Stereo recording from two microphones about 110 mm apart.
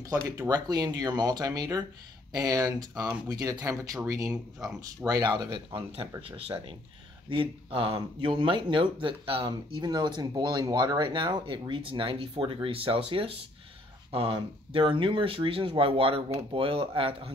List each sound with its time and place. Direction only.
0.4 s speech: 40° right (ahead or behind)
6.2 s speech: 55° right (ahead or behind)